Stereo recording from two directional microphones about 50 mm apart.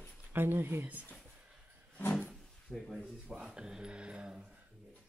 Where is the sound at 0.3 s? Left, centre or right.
Right.